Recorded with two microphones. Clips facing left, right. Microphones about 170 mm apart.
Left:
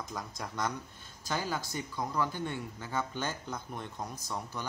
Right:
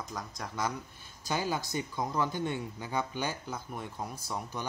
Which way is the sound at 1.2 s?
15° right (ahead or behind).